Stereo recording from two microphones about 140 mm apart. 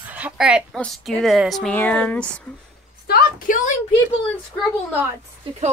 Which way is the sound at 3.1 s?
90° left.